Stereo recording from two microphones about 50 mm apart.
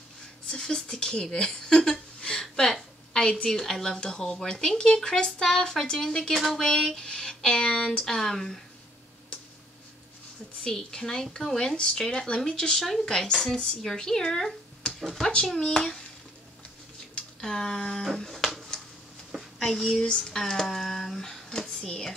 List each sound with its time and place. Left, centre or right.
0.5 s speech: centre
2.5 s a sound: centre
3.4 s speech: centre
6.3 s speech: centre
10.6 s speech: centre
15.0 s speech: centre
17.4 s speech: centre
19.6 s speech: centre